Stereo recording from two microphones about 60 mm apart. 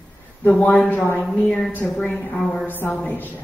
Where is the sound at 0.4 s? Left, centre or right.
Centre.